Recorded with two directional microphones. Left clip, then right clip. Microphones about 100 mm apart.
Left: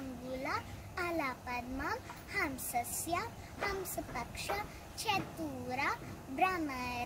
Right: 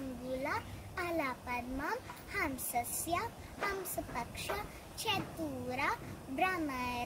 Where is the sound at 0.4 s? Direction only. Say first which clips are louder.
Left 1 dB; 20° right (ahead or behind).